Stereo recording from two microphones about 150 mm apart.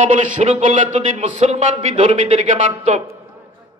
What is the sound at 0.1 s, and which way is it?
Speech, 55° right (ahead or behind).